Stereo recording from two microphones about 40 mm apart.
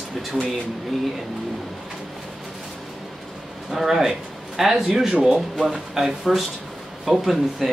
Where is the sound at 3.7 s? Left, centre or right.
Centre.